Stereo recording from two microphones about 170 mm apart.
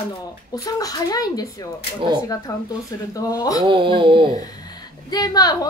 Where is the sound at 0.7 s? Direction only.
20° left (ahead or behind).